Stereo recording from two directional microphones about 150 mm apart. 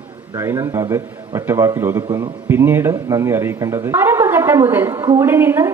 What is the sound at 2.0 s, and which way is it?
Speech, 30° right (ahead or behind).